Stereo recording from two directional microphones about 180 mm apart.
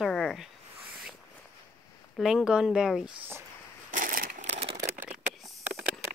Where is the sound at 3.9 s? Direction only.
50° right (ahead or behind); by 4.8 s 35° right (ahead or behind).